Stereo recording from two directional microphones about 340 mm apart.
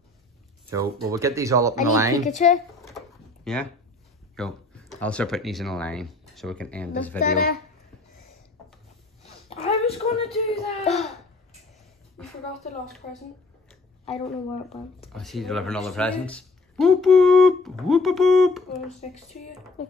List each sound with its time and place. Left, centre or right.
0.7 s speech: centre
2.2 s speech: left
3.5 s speech: centre
9.2 s speech: centre
14.2 s speech: centre
15.1 s speech: centre
18.9 s speech: centre